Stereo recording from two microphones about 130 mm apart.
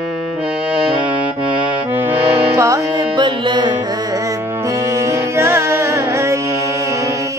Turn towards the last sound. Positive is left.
turn(degrees=-20)  # may be behind; listen again after turning